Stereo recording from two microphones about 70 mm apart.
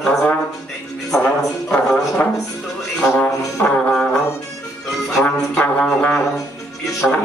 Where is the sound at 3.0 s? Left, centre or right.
Centre.